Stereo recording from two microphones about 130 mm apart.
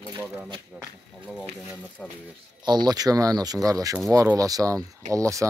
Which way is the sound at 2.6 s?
35° right (ahead or behind).